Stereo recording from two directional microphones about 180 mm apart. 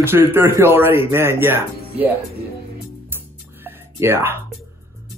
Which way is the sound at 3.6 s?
10° right (ahead or behind).